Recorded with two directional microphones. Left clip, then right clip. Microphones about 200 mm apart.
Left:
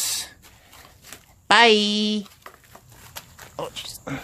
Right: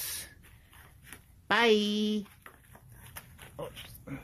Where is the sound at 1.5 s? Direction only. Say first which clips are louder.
Left 10 dB; 15° left (ahead or behind).